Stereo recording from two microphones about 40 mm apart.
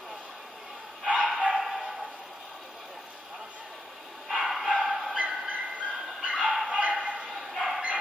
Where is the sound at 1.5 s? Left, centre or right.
Centre.